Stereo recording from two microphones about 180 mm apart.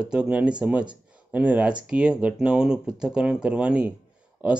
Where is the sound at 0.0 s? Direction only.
5° right (ahead or behind).